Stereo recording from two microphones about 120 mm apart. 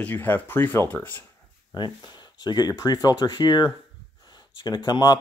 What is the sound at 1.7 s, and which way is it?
Speech, 40° left (ahead or behind).